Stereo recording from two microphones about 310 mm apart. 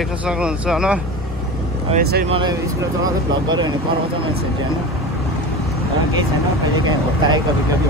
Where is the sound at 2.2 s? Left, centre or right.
Centre.